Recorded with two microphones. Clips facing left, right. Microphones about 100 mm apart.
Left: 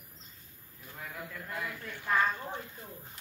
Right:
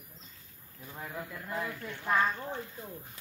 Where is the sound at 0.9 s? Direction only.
30° right (ahead or behind).